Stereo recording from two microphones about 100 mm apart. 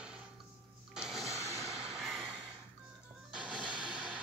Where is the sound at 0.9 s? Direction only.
5° right (ahead or behind).